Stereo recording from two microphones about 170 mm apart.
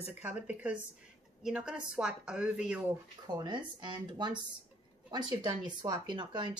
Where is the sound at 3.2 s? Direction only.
25° right (ahead or behind).